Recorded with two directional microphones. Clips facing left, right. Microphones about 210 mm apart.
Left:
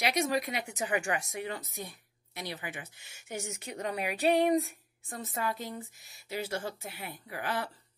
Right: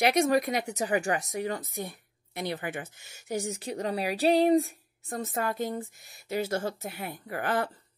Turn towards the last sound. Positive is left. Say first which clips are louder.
# right 6 dB
turn(degrees=-50)  # may be behind; listen again after turning